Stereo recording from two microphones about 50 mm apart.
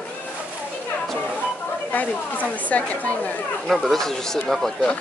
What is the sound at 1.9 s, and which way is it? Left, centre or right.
Chatter, left.